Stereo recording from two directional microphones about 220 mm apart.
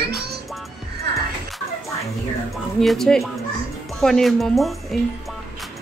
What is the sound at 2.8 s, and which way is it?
Speech, centre (ahead or behind).